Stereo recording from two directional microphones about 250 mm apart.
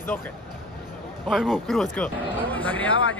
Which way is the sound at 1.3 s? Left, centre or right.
Centre.